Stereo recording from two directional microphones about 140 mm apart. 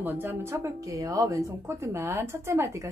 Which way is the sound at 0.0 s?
15° right (ahead or behind).